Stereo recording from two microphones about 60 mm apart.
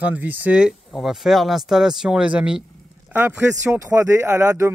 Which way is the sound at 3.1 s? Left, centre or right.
Right.